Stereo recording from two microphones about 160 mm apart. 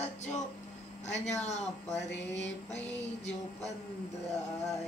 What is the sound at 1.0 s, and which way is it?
Music, 45° left (ahead or behind).